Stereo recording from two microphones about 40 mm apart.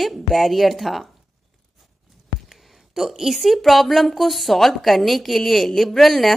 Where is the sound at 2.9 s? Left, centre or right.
Centre.